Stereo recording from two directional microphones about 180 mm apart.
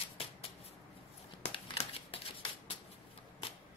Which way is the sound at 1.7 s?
30° left (ahead or behind).